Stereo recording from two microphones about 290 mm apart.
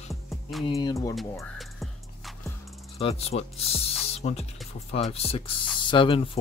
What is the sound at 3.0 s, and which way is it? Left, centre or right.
Speech, left.